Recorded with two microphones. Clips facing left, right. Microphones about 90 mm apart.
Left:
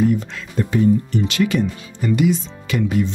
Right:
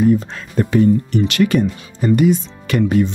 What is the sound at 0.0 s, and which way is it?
Speech, 35° right (ahead or behind).